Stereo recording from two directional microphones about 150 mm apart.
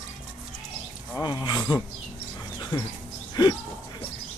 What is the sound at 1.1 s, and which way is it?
Speech, 30° left (ahead or behind).